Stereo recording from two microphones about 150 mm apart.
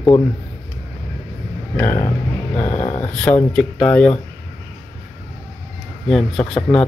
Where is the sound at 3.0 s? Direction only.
5° left (ahead or behind).